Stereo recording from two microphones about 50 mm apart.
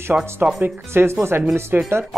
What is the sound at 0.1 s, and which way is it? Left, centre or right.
Speech, right.